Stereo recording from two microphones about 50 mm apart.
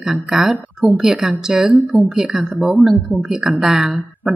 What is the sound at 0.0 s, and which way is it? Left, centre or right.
A woman's voice, centre.